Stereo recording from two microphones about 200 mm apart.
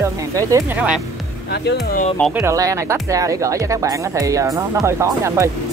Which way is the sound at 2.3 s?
15° right (ahead or behind).